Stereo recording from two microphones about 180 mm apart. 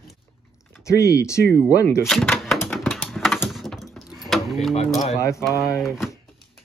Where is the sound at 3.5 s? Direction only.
Centre (ahead or behind).